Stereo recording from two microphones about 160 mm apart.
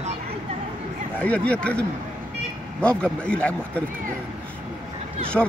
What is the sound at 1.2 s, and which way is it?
Speech, 10° left (ahead or behind).